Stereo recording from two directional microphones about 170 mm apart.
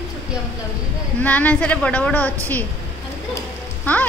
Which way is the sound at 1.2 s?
10° left (ahead or behind).